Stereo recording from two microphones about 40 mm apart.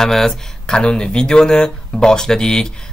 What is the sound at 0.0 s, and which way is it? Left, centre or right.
Speech, centre.